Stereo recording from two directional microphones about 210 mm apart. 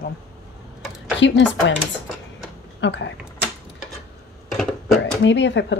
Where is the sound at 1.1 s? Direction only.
60° left (ahead or behind).